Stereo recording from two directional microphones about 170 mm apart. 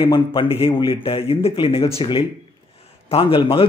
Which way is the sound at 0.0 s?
30° left (ahead or behind).